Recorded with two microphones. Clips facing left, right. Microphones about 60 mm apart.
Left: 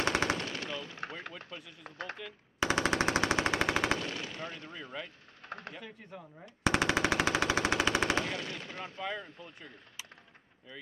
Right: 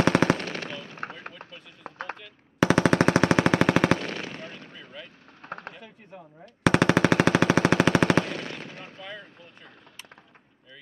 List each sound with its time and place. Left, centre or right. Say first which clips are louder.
0.1 s machine gun: right 8 dB; right
0.7 s gunshot: right 3 dB; right
1.9 s a sound: right 6 dB; right
2.6 s machine gun: right 9 dB; right
4.7 s speech: left 1 dB; centre
5.4 s a sound: right 5 dB; right
6.6 s machine gun: right 8 dB; right
9.0 s speech: left 3 dB; centre